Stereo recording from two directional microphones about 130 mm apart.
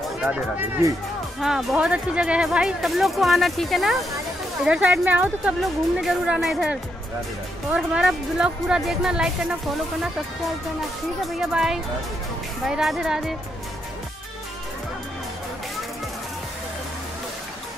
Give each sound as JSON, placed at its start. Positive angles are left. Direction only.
{"t": 0.2, "sound": "speech", "side_deg": -10}
{"t": 5.6, "sound": "speech", "side_deg": 0}
{"t": 11.1, "sound": "speech", "side_deg": 0}